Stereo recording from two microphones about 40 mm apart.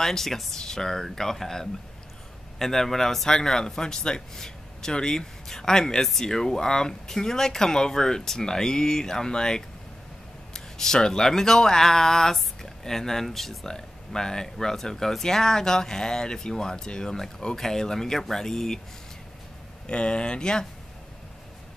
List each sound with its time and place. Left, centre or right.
0.0 s speech: centre
13.7 s speech: centre
19.9 s speech: left